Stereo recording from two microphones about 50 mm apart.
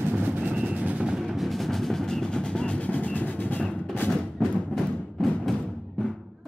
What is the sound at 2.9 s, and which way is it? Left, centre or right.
Music, left.